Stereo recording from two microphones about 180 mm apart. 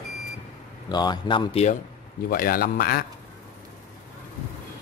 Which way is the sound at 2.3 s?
55° left (ahead or behind).